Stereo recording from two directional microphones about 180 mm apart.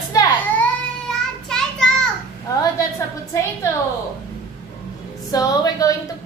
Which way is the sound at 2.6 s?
15° left (ahead or behind).